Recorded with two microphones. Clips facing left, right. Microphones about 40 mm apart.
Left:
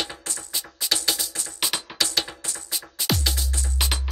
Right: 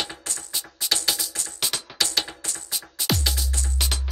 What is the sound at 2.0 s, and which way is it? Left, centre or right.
Music, centre.